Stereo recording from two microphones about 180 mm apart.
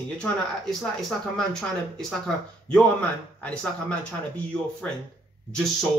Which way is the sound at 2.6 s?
5° left (ahead or behind).